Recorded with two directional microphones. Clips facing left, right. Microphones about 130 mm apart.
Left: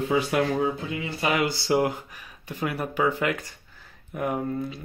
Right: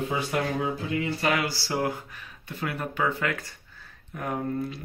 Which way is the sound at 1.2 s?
20° left (ahead or behind).